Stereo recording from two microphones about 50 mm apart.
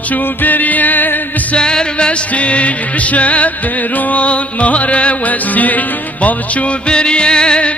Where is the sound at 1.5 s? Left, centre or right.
Centre.